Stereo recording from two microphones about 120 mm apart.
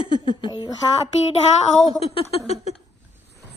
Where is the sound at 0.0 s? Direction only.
45° left (ahead or behind).